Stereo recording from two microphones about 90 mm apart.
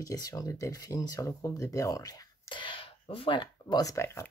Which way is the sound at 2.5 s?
65° left (ahead or behind).